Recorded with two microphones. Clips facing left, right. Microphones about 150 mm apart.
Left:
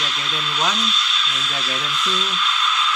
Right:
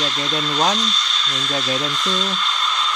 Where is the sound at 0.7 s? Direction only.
5° left (ahead or behind).